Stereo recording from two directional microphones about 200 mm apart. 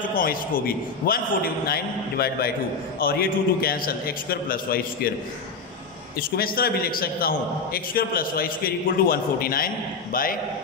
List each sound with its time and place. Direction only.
0.1 s a man's voice: 45° left (ahead or behind)
6.1 s a man's voice: 50° left (ahead or behind)